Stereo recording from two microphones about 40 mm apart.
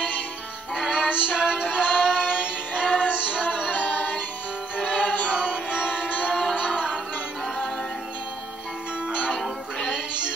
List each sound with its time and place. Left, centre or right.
0.7 s music: centre
1.0 s music: right
3.8 s music: left
4.7 s music: right
5.0 s music: left
5.4 s music: right
9.3 s music: centre